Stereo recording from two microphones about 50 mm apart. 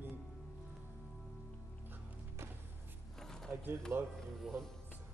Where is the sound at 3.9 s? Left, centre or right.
Right.